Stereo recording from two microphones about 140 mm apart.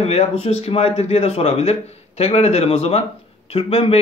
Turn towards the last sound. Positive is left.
turn(degrees=45)  # may be behind; listen again after turning